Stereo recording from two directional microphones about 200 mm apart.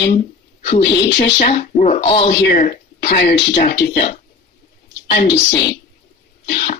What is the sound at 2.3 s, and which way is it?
Speech, 55° left (ahead or behind).